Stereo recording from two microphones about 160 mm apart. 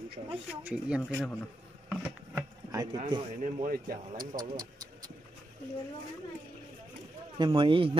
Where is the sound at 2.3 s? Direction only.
20° right (ahead or behind).